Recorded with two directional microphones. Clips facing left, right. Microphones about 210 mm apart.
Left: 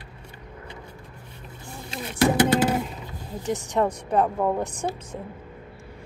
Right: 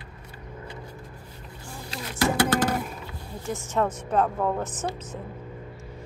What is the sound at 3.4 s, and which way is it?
Speech, 20° left (ahead or behind).